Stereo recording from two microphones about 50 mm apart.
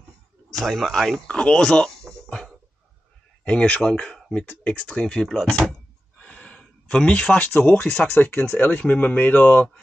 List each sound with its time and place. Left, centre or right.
0.5 s a man's voice: centre
1.2 s speech: centre
3.4 s speech: left
6.1 s a sound: centre
7.3 s speech: left
8.1 s speech: left
8.6 s speech: left